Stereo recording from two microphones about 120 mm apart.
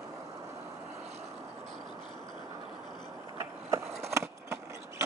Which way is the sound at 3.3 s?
25° right (ahead or behind).